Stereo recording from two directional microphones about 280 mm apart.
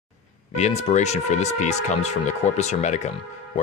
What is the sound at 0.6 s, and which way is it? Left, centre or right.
Speech, left.